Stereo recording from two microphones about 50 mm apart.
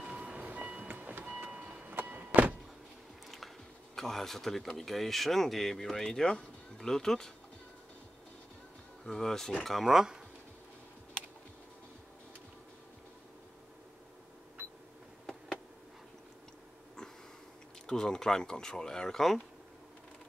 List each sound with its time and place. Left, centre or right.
0.0 s train: right
0.4 s vehicle: right
1.9 s power windows: right
3.9 s speech: centre
9.0 s speech: centre
17.8 s speech: centre